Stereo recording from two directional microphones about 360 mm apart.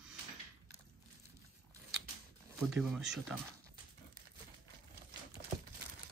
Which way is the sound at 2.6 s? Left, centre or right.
Centre.